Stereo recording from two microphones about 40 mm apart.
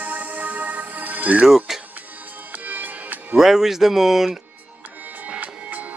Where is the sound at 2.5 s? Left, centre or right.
Right.